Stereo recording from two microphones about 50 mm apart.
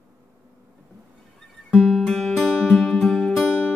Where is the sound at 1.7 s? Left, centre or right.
Centre.